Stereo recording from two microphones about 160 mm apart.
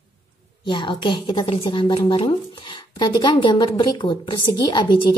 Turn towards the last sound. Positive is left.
turn(degrees=30)  # may be behind; listen again after turning